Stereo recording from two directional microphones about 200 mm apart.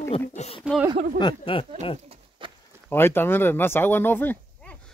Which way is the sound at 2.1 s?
25° right (ahead or behind).